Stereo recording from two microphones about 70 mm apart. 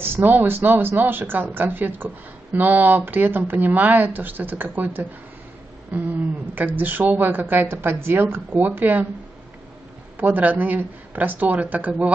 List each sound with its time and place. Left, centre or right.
0.0 s a woman's voice: right
10.1 s a woman's voice: right